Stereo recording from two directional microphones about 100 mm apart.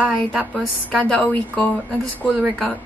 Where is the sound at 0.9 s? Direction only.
15° left (ahead or behind).